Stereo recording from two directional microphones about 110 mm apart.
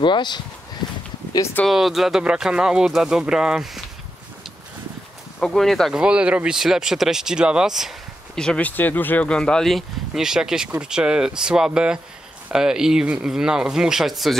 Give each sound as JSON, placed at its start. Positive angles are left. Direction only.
{"t": 0.0, "sound": "speech", "side_deg": 45}
{"t": 1.7, "sound": "speech", "side_deg": 0}
{"t": 5.4, "sound": "speech", "side_deg": 5}
{"t": 8.4, "sound": "speech", "side_deg": 10}